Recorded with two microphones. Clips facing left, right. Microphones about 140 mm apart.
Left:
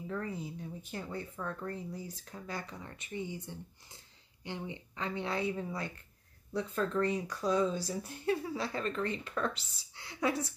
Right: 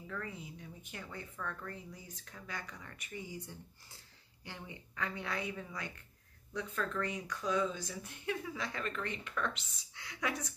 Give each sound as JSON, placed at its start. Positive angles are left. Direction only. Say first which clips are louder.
{"t": 0.0, "sound": "a woman's voice", "louder": "left 6 dB", "side_deg": 35}